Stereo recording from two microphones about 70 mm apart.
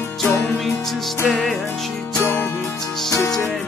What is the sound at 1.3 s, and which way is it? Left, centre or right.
Music, centre.